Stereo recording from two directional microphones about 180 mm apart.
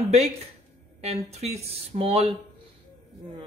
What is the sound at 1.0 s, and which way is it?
Speech, 35° right (ahead or behind).